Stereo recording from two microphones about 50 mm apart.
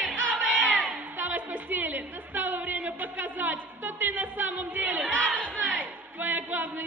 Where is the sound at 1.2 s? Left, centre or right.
Right.